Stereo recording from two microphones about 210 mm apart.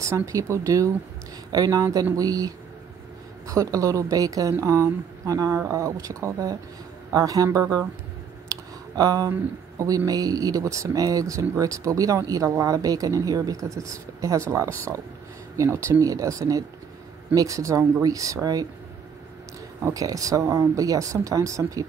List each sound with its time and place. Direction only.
0.0 s speech: 15° right (ahead or behind)
8.9 s speech: 15° right (ahead or behind)
19.8 s speech: 15° right (ahead or behind)